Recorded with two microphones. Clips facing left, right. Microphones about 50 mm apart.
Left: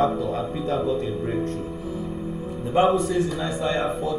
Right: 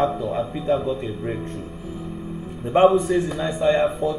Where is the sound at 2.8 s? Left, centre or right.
Right.